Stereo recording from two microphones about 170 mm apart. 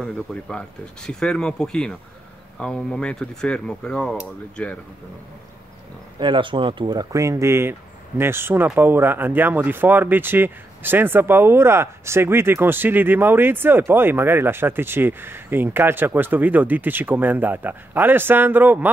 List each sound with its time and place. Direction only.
0.0 s speech: 5° left (ahead or behind)
6.1 s speech: 30° right (ahead or behind); by 18.9 s 10° right (ahead or behind)